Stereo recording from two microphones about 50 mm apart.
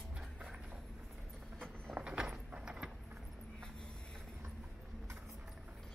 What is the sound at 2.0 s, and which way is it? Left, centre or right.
Clip-clop, centre.